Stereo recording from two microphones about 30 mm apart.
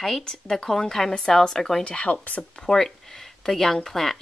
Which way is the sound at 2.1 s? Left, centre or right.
Left.